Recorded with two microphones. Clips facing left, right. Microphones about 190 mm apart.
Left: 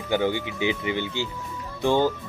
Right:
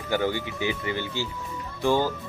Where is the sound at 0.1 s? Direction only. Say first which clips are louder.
Left 2 dB; 15° left (ahead or behind).